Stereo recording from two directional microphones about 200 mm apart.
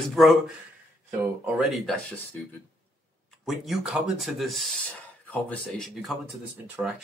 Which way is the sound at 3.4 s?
Centre (ahead or behind).